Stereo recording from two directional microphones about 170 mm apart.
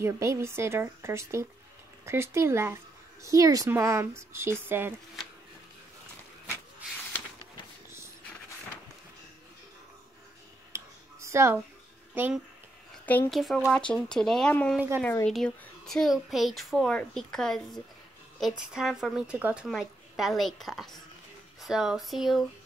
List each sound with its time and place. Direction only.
0.0 s speech: 15° right (ahead or behind)
10.7 s a sound: 15° right (ahead or behind)
12.1 s speech: 10° right (ahead or behind)
13.0 s speech: 10° left (ahead or behind)